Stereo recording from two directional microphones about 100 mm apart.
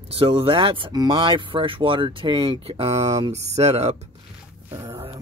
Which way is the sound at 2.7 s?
70° right (ahead or behind).